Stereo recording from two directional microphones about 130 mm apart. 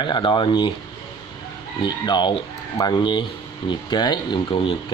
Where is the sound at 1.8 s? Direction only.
35° left (ahead or behind).